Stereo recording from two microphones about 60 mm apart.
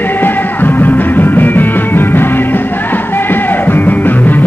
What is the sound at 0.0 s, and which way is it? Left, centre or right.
Music, left.